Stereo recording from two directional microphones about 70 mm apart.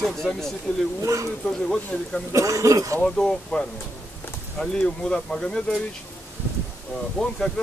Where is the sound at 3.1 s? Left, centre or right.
Centre.